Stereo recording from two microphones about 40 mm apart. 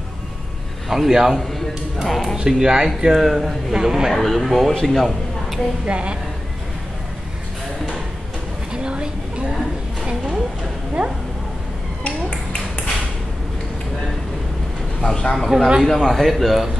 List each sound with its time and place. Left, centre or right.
0.8 s a man's voice: centre
2.0 s a man's voice: centre
2.3 s speech: centre
3.1 s a man's voice: centre
4.1 s a man's voice: centre
5.9 s a woman's voice: right
8.7 s a sound: right
11.0 s speech: centre
15.0 s speech: centre
15.3 s a man's voice: centre